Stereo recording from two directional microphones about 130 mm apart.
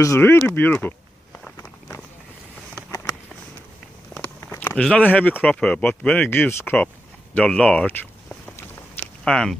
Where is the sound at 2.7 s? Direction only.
15° left (ahead or behind).